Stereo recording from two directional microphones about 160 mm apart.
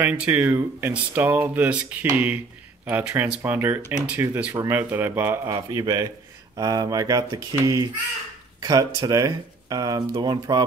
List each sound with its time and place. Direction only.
0.0 s speech: 10° right (ahead or behind); by 10.6 s 25° right (ahead or behind)